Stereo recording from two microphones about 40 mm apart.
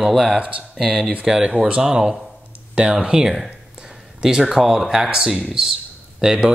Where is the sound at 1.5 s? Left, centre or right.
Right.